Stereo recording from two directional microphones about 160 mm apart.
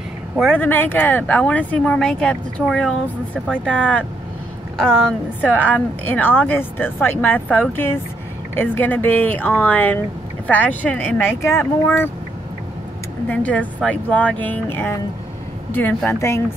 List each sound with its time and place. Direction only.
0.4 s a woman's voice: 10° left (ahead or behind)
13.3 s speech: 10° left (ahead or behind)